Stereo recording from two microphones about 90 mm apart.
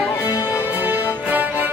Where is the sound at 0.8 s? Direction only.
20° right (ahead or behind).